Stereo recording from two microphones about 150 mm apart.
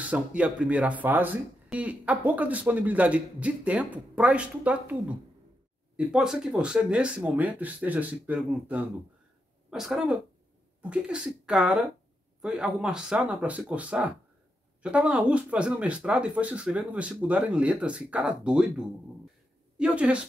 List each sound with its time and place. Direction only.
0.0 s speech: 10° right (ahead or behind)
9.7 s speech: 5° right (ahead or behind)